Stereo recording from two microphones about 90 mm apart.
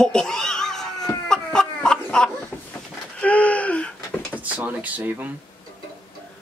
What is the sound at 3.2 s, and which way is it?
Gasp, 15° left (ahead or behind).